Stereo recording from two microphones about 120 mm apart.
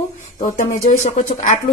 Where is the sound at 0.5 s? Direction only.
90° left.